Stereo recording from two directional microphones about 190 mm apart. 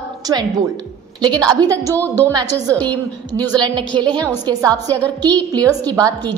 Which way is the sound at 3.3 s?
20° right (ahead or behind).